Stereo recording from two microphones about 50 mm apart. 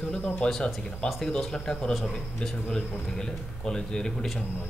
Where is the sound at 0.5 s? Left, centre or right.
Centre.